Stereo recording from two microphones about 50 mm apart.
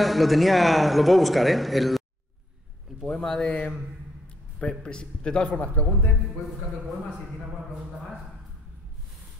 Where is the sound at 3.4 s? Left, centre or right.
Left.